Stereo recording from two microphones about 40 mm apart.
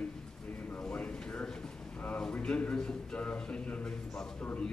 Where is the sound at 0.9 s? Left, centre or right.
Left.